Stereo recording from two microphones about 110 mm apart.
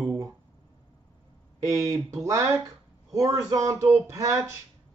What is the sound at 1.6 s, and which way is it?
Speech, 30° right (ahead or behind).